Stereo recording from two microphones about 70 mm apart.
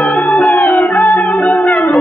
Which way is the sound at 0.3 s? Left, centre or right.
Centre.